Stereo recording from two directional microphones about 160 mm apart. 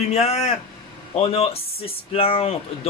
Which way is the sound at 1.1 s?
35° left (ahead or behind).